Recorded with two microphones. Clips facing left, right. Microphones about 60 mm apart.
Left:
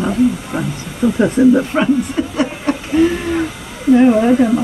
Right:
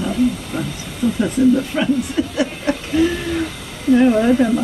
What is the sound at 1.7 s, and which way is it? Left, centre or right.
Speech, left.